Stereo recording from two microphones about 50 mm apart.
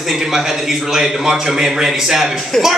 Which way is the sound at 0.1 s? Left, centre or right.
Centre.